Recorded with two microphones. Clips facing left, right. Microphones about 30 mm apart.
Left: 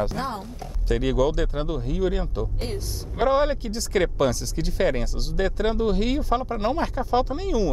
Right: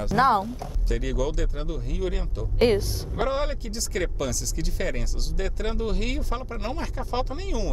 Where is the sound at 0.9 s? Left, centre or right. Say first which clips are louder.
Left 6 dB; left.